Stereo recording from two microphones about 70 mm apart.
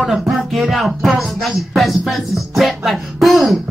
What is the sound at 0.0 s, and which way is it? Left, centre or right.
Speech, centre.